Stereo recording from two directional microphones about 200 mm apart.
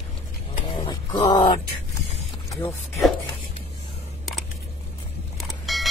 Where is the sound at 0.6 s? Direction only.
25° left (ahead or behind).